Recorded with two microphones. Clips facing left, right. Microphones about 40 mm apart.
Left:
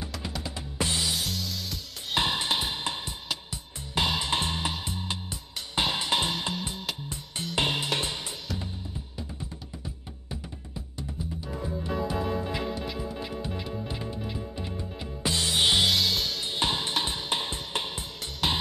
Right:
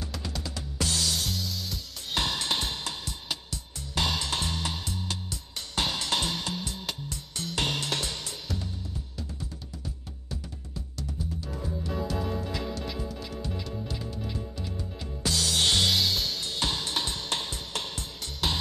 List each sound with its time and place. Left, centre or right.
0.2 s music: left
1.1 s music: centre
2.1 s music: left
9.4 s music: centre
15.9 s music: centre
16.4 s music: left